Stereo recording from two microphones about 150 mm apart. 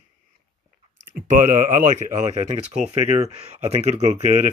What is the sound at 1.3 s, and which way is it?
Speech, 60° right (ahead or behind).